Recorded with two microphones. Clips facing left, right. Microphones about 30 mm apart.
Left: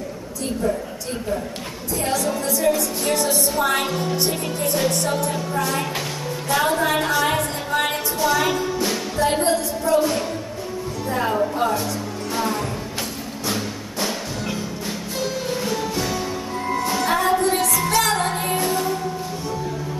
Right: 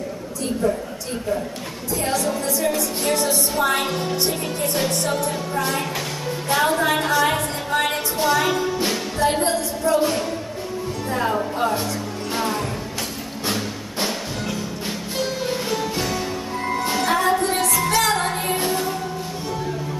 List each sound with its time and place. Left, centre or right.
2.0 s music: centre
14.9 s music: right
15.7 s music: centre